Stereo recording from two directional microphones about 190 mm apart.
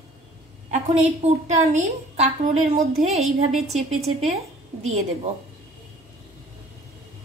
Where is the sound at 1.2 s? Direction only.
35° right (ahead or behind).